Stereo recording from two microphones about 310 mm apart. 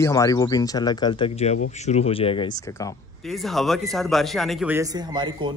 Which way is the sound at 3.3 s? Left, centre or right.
Centre.